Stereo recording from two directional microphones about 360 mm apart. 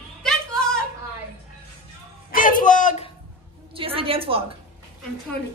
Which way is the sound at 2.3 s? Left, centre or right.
Left.